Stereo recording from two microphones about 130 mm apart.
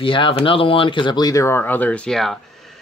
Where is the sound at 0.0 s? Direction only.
40° left (ahead or behind).